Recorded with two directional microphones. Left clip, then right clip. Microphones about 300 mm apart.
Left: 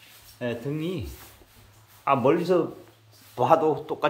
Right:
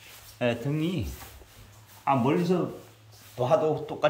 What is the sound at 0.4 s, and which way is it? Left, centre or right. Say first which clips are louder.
Speech: right 2 dB; centre.